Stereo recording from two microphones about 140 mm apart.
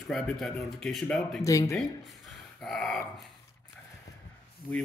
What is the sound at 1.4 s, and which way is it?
Speech, 25° left (ahead or behind).